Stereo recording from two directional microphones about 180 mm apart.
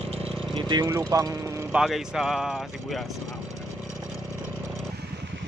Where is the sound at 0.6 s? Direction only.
25° right (ahead or behind).